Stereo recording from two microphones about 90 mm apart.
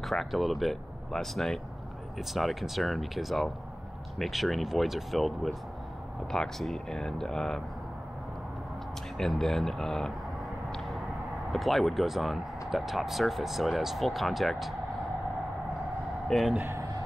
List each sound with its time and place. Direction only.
0.0 s speech: centre (ahead or behind)
9.2 s speech: 5° left (ahead or behind)
11.5 s speech: centre (ahead or behind)
16.3 s speech: centre (ahead or behind)
16.6 s a sound: 35° right (ahead or behind)